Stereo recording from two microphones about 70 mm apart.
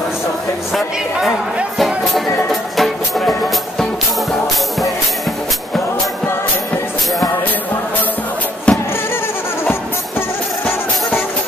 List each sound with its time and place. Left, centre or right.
1.8 s music: centre
8.7 s music: centre